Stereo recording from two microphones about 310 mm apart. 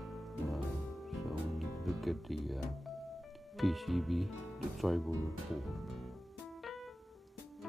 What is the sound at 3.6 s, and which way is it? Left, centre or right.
Speech, centre.